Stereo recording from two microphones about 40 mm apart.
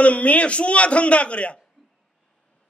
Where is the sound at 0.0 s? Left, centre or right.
Left.